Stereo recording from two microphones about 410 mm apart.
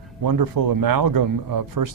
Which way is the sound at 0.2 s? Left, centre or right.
Right.